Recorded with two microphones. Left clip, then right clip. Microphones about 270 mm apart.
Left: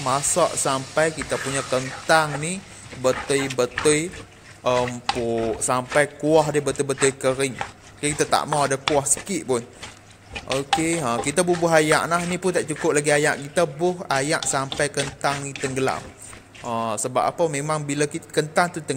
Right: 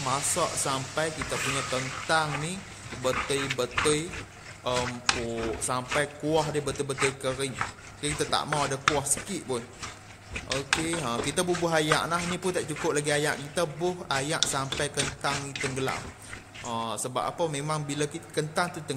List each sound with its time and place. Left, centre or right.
0.0 s speech: centre